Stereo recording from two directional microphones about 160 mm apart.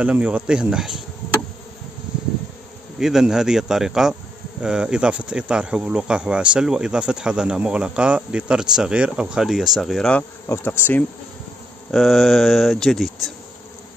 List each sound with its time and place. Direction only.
0.0 s speech: 5° right (ahead or behind)
3.0 s speech: 5° right (ahead or behind)
10.5 s bee: 15° left (ahead or behind)
11.9 s speech: centre (ahead or behind)